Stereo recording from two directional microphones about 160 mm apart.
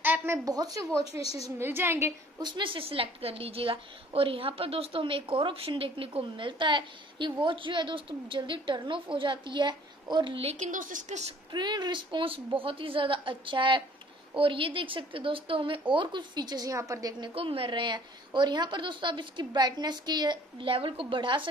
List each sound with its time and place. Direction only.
0.0 s a woman's voice: 15° right (ahead or behind)
2.5 s a woman's voice: 30° right (ahead or behind); by 11.2 s 50° right (ahead or behind)
11.5 s a woman's voice: 25° right (ahead or behind)
17.3 s a woman's voice: 35° right (ahead or behind)